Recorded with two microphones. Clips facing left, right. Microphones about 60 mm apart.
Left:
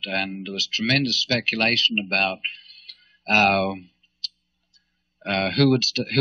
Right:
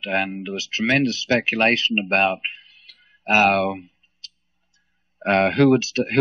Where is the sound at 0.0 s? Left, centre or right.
Right.